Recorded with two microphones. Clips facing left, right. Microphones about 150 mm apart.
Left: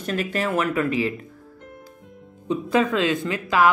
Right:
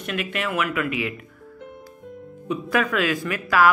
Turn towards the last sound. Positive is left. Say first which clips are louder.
# even
turn(degrees=25)  # may be behind; listen again after turning